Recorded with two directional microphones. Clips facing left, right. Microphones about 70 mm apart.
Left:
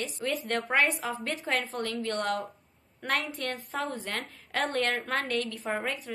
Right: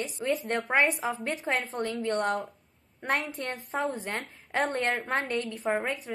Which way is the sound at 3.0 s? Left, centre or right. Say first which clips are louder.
Right 1 dB; right.